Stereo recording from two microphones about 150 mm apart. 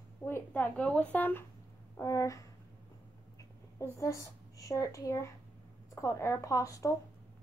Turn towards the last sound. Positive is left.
turn(degrees=20)  # may be behind; listen again after turning